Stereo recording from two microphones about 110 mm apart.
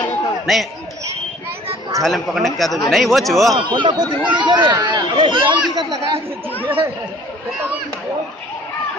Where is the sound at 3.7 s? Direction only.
45° right (ahead or behind).